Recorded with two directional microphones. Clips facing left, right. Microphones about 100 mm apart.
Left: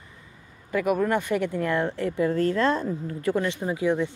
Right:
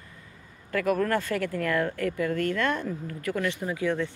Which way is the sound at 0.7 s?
15° left (ahead or behind).